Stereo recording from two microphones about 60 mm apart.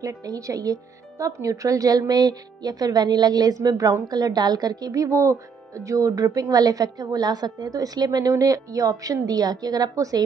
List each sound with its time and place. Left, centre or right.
0.0 s speech: right